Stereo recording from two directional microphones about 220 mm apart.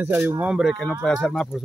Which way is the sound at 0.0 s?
10° right (ahead or behind).